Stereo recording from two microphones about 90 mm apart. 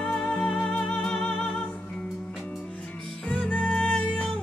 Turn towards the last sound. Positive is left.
turn(degrees=10)  # may be behind; listen again after turning